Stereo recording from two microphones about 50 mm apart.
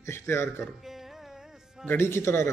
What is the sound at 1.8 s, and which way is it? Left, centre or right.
Speech, left.